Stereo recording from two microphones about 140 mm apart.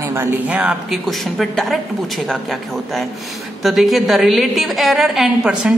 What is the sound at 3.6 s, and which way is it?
A woman's voice, centre (ahead or behind).